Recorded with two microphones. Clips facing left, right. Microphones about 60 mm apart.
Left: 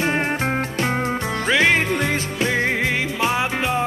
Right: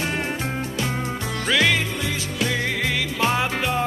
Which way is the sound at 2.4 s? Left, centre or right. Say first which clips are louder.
Left 3 dB; left.